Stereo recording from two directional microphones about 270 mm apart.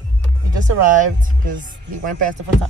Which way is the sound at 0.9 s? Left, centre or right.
Right.